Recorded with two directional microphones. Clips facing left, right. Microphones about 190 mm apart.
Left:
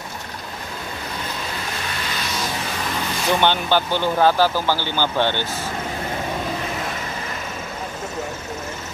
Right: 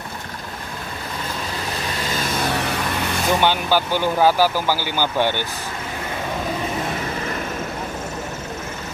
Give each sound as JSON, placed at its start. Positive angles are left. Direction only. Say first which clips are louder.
{"t": 2.1, "sound": "music", "louder": "right 5 dB", "side_deg": -50}
{"t": 3.3, "sound": "speech", "louder": "left 1 dB", "side_deg": -10}